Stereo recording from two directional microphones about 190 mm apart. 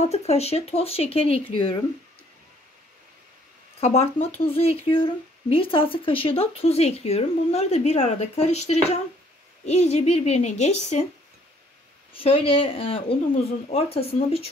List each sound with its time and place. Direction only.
0.0 s speech: 35° left (ahead or behind)
3.8 s speech: 35° left (ahead or behind)
12.1 s a woman's voice: 30° left (ahead or behind)